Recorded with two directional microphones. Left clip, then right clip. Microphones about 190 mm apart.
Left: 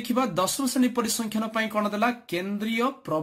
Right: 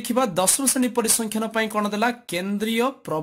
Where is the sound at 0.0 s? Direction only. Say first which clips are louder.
Right 3 dB; 35° right (ahead or behind).